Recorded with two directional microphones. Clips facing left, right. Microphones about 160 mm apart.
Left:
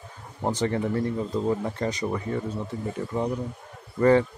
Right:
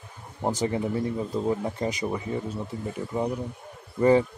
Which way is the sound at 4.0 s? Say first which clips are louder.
Left 1 dB; 15° right (ahead or behind).